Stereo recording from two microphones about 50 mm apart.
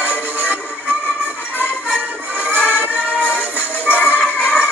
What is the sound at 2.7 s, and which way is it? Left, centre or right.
Music, right.